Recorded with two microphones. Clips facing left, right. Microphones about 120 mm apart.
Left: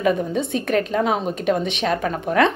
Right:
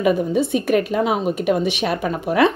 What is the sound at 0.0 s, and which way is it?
Speech, 5° right (ahead or behind).